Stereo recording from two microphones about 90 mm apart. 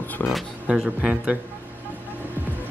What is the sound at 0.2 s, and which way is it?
Speech, 10° left (ahead or behind).